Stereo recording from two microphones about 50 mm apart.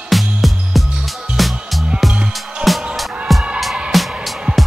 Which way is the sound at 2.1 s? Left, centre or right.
Right.